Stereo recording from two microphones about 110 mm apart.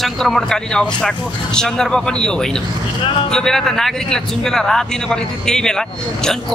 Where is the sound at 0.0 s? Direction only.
5° left (ahead or behind).